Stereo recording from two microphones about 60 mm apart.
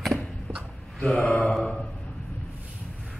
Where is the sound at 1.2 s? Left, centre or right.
Centre.